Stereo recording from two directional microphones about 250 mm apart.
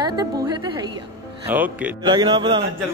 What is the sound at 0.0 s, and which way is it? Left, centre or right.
Music, centre.